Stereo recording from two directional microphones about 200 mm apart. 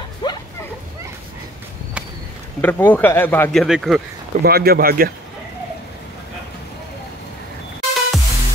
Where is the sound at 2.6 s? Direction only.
10° left (ahead or behind).